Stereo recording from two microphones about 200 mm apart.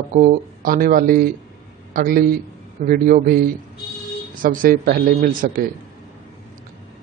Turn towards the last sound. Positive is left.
turn(degrees=-45)  # may be behind; listen again after turning